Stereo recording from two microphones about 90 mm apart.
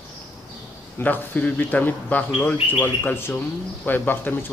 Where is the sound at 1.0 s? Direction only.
20° left (ahead or behind).